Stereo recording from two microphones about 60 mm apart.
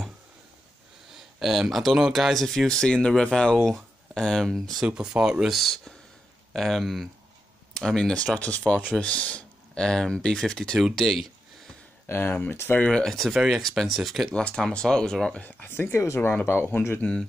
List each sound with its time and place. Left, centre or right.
1.1 s speech: centre
4.8 s speech: centre
5.6 s speech: centre
11.0 s a sound: centre
12.1 s speech: left
12.8 s speech: centre
14.3 s speech: centre
15.3 s speech: left
15.7 s speech: left
16.2 s speech: left
17.0 s speech: centre